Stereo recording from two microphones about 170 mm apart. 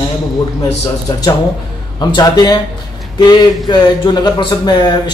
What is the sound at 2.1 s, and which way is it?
Speech, 25° left (ahead or behind).